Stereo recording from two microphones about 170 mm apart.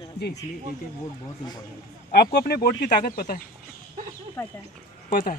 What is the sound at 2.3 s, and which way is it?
Speech, 70° left (ahead or behind).